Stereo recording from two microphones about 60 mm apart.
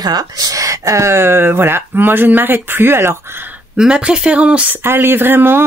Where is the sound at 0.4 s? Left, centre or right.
Right.